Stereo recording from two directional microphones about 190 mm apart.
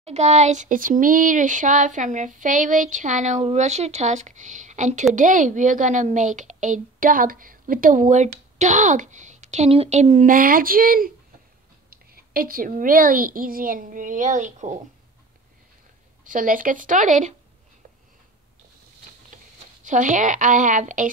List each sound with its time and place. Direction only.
0.0 s a woman's voice: 35° right (ahead or behind)
16.3 s a woman's voice: 45° right (ahead or behind)
19.3 s speech: 40° right (ahead or behind)